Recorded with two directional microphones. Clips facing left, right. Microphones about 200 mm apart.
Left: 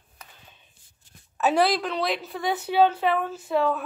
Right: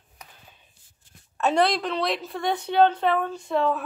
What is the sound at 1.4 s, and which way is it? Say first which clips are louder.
A woman's voice: even; 5° left (ahead or behind).